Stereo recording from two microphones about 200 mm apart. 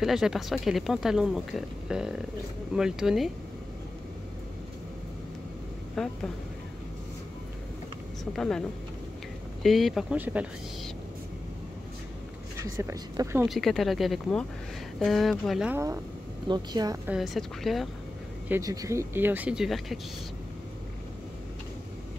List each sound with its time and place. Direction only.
0.0 s speech: centre (ahead or behind)
6.0 s speech: 5° left (ahead or behind)
8.3 s speech: 5° left (ahead or behind)
12.7 s speech: 15° right (ahead or behind)
13.5 s speech: centre (ahead or behind)
16.4 s speech: 20° right (ahead or behind)
17.1 s speech: centre (ahead or behind)
18.5 s speech: 15° right (ahead or behind); by 20.0 s centre (ahead or behind)